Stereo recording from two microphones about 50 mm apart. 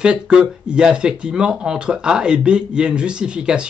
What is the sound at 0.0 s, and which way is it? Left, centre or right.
Speech, centre.